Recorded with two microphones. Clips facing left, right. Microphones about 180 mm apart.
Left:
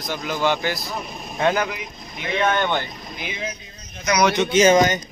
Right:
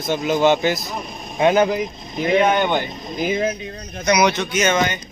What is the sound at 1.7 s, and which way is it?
Speech, 40° right (ahead or behind).